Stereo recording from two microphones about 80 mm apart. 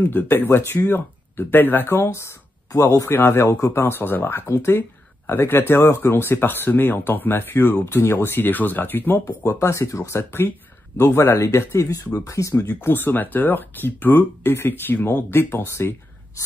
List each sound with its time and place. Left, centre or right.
0.0 s speech: left